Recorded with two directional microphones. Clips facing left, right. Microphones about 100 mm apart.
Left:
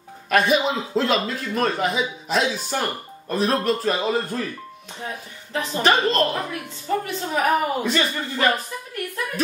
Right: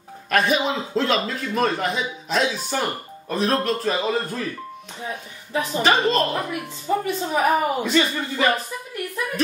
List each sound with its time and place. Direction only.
0.3 s a man's voice: centre (ahead or behind)
5.5 s a man's voice: 5° right (ahead or behind)